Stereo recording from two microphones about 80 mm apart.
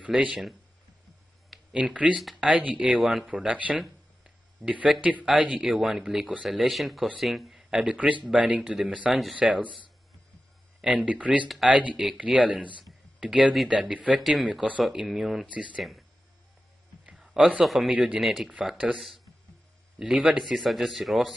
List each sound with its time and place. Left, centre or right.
0.0 s speech: centre
0.3 s speech: centre
1.8 s speech: centre
3.0 s speech: centre
3.3 s speech: centre
3.8 s a sound: centre
4.6 s speech: centre
7.7 s speech: centre
10.8 s speech: centre
15.5 s speech: centre
17.2 s a sound: centre
17.6 s speech: centre